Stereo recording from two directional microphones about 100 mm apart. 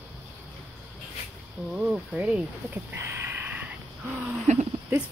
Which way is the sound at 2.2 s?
15° right (ahead or behind).